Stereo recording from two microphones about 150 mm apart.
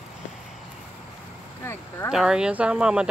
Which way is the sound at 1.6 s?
15° left (ahead or behind).